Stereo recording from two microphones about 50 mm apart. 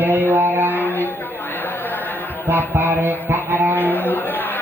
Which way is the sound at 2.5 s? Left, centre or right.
Right.